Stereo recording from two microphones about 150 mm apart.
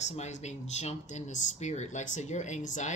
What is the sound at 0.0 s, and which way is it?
Speech, 50° left (ahead or behind).